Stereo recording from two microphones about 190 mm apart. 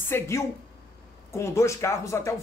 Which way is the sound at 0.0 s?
10° left (ahead or behind).